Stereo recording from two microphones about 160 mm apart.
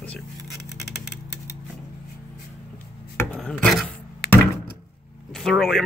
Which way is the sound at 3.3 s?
5° left (ahead or behind).